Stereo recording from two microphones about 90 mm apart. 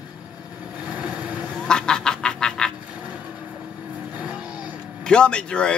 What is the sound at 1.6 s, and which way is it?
Duck, 10° left (ahead or behind).